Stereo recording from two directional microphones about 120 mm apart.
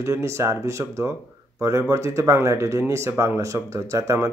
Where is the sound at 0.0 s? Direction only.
25° right (ahead or behind).